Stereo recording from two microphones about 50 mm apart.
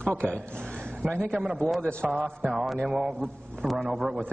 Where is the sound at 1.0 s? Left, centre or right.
Centre.